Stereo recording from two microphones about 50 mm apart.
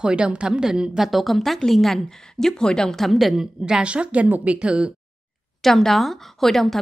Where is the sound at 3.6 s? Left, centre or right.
Centre.